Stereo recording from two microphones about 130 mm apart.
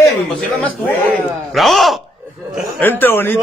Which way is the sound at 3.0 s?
15° left (ahead or behind).